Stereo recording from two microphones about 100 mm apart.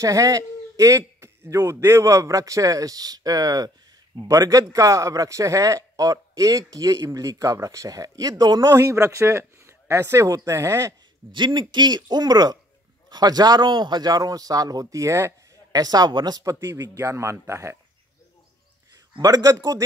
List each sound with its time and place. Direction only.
0.0 s speech: 35° right (ahead or behind)
11.3 s speech: 50° right (ahead or behind); by 15.8 s 30° right (ahead or behind)
15.8 s speech: 40° right (ahead or behind)
16.5 s a man's voice: 30° right (ahead or behind)
19.1 s speech: 40° right (ahead or behind)